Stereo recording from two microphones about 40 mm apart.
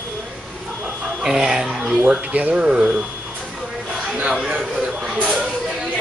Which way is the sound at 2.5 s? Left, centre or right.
Right.